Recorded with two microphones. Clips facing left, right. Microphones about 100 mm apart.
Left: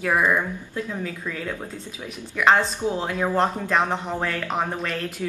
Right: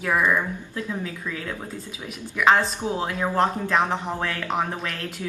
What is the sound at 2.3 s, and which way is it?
Speech, centre (ahead or behind).